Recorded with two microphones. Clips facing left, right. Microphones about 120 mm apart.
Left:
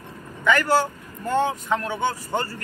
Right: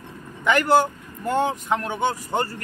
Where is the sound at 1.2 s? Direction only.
15° right (ahead or behind).